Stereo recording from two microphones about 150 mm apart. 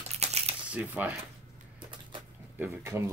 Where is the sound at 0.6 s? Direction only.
10° right (ahead or behind).